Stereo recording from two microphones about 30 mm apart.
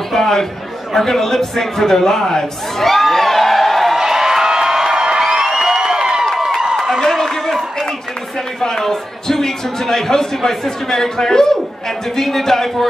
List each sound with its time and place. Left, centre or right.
0.1 s a man's voice: centre
2.9 s a sound: centre
3.9 s a sound: centre
5.2 s music: centre
5.8 s crowd: centre
8.5 s a man's voice: centre